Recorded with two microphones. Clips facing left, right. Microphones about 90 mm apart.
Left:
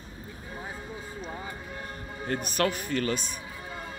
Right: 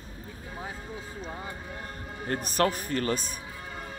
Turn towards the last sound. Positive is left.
turn(degrees=-40)  # may be behind; listen again after turning